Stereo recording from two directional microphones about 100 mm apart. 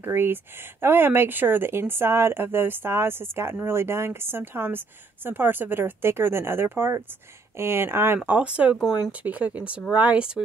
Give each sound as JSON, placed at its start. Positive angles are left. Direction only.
{"t": 0.0, "sound": "speech", "side_deg": -20}